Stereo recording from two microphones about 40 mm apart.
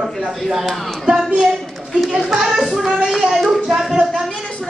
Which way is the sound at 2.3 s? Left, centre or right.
Centre.